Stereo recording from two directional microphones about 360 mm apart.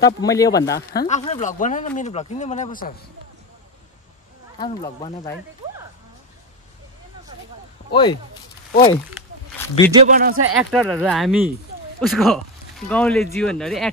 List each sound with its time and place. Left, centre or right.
0.0 s speech: centre
4.6 s speech: centre
7.9 s speech: centre
9.9 s speech: right
10.6 s speech: centre